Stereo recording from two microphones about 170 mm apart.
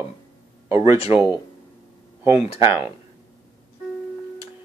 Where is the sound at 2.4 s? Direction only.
35° left (ahead or behind).